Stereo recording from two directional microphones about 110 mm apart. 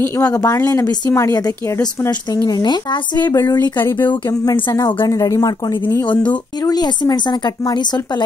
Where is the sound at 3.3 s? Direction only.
30° left (ahead or behind).